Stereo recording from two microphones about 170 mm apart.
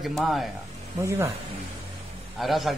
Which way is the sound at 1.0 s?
15° right (ahead or behind).